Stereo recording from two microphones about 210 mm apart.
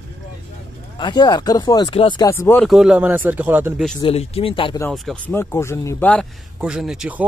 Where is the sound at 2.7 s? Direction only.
5° right (ahead or behind).